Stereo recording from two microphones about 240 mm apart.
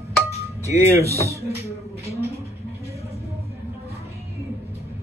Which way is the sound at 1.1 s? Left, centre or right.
Centre.